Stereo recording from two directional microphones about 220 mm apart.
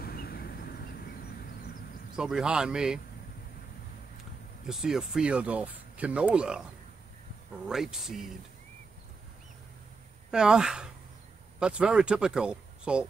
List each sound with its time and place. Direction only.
0.0 s vehicle: 45° left (ahead or behind)
2.1 s speech: 5° right (ahead or behind)
4.6 s speech: centre (ahead or behind)
7.6 s speech: centre (ahead or behind)
10.3 s speech: 5° right (ahead or behind)